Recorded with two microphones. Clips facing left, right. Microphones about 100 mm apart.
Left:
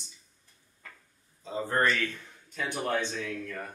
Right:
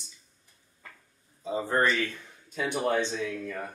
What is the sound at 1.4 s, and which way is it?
A man's voice, 10° right (ahead or behind).